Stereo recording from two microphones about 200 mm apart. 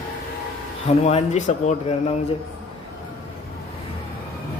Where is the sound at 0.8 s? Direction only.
35° left (ahead or behind).